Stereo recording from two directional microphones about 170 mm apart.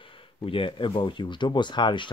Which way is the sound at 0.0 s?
30° left (ahead or behind).